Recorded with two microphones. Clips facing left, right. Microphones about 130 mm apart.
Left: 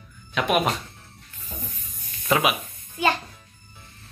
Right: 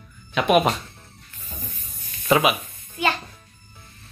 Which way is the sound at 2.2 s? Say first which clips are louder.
Right 3 dB; 5° right (ahead or behind).